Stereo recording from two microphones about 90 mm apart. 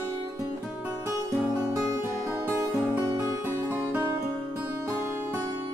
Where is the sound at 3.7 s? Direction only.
25° right (ahead or behind).